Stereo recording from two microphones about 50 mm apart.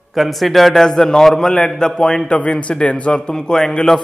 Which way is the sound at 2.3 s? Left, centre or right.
Left.